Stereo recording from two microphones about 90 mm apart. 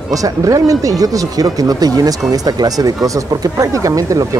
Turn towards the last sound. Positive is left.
turn(degrees=-40)  # may be behind; listen again after turning